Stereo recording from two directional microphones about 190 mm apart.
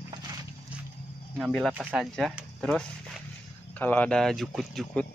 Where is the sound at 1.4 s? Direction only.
5° left (ahead or behind).